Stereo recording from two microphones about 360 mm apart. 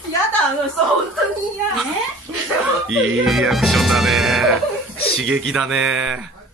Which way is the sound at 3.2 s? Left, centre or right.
Centre.